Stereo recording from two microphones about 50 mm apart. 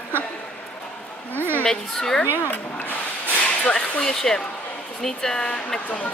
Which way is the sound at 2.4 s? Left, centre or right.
Left.